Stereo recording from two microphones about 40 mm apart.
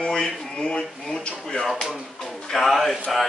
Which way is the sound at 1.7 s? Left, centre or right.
Centre.